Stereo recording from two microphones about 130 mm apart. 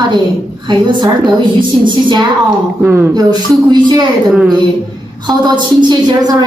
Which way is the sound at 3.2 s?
30° right (ahead or behind).